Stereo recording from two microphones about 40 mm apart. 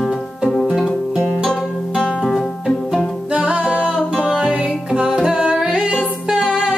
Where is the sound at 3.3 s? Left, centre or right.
Right.